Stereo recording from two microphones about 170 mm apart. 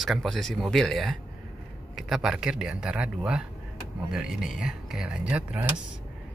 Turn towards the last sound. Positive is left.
turn(degrees=-10)  # may be behind; listen again after turning